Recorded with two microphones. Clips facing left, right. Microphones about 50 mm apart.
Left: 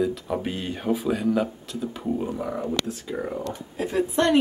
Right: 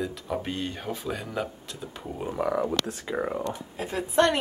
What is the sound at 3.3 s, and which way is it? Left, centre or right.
Speech, right.